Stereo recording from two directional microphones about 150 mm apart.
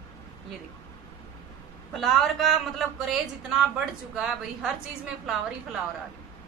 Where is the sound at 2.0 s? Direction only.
Centre (ahead or behind).